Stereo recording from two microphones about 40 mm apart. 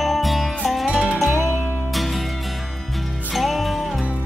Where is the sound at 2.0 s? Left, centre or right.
Centre.